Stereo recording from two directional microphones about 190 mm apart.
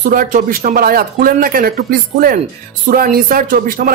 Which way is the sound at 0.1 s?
45° right (ahead or behind).